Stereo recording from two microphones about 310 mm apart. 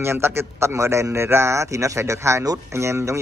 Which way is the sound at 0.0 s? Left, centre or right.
Centre.